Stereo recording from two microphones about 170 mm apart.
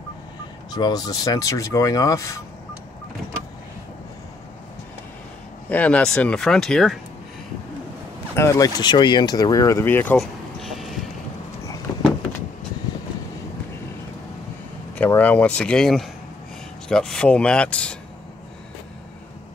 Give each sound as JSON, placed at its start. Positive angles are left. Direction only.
{"t": 0.7, "sound": "speech", "side_deg": 25}
{"t": 5.7, "sound": "speech", "side_deg": 10}
{"t": 8.4, "sound": "speech", "side_deg": 20}
{"t": 10.1, "sound": "a sound", "side_deg": 0}
{"t": 11.9, "sound": "a sound", "side_deg": 20}
{"t": 15.0, "sound": "speech", "side_deg": 10}